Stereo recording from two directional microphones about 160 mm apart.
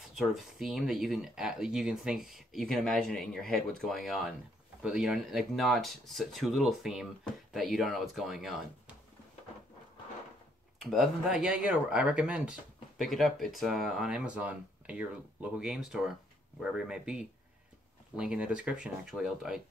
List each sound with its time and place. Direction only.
0.1 s speech: centre (ahead or behind)
10.8 s speech: centre (ahead or behind)